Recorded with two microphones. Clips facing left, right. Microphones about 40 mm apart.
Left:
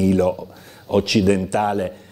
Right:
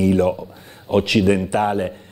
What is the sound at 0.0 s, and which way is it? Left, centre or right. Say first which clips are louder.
Speech: right 1 dB; centre.